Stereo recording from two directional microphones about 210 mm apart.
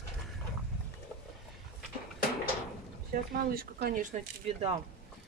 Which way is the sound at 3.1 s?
45° right (ahead or behind).